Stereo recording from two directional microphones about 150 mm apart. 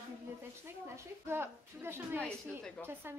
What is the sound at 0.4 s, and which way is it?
A woman's voice, 15° right (ahead or behind).